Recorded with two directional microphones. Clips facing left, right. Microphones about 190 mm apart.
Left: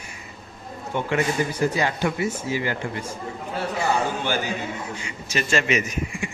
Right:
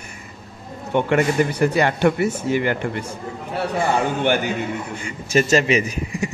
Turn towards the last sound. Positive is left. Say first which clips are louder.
# right 4 dB
turn(degrees=-35)  # may be behind; listen again after turning